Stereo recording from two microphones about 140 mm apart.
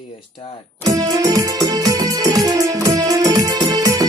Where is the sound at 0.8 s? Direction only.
25° right (ahead or behind).